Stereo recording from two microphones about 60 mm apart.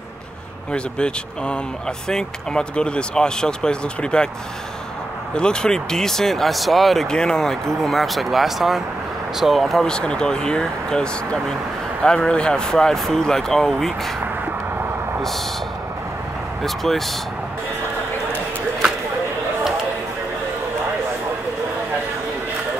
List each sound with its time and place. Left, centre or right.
0.7 s speech: centre
5.3 s speech: centre
9.8 s speech: centre
16.6 s speech: centre